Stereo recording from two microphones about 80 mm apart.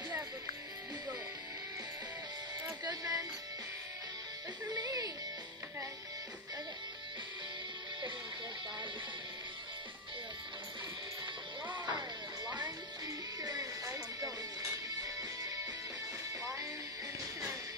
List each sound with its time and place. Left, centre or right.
2.9 s music: right
4.7 s music: right
11.6 s music: right
13.0 s music: right